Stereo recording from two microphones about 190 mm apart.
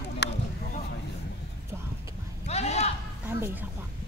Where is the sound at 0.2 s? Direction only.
60° left (ahead or behind).